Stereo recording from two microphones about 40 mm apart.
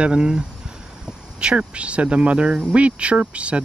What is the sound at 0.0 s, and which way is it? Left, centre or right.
Speech, right.